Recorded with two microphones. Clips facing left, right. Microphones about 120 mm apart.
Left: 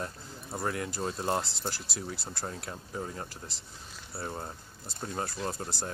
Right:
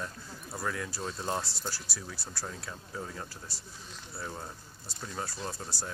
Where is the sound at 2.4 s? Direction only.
30° left (ahead or behind).